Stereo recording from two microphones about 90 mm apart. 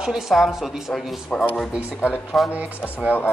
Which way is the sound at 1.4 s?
10° left (ahead or behind).